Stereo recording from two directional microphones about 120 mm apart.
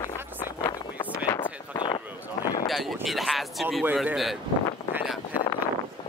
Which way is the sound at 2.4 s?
35° left (ahead or behind).